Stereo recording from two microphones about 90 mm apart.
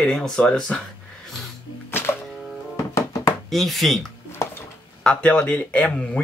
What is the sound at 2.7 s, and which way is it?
Music, 40° left (ahead or behind).